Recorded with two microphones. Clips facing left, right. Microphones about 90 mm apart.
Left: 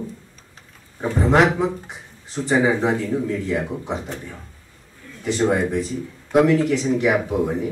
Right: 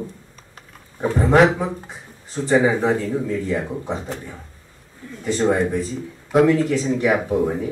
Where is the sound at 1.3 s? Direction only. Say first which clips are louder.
Right 1 dB; 20° left (ahead or behind).